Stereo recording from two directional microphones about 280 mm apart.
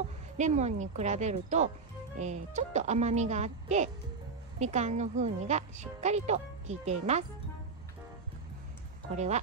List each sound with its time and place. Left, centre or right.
0.4 s speech: right
9.1 s speech: right